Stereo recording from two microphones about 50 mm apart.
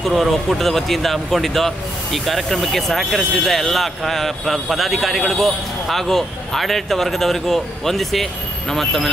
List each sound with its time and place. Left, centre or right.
0.0 s speech: centre